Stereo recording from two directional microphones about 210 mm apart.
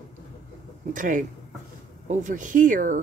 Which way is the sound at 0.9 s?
40° right (ahead or behind).